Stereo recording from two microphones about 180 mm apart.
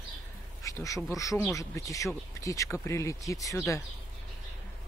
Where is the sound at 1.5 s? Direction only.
20° left (ahead or behind).